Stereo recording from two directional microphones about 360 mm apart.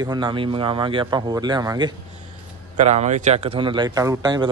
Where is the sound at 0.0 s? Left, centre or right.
Centre.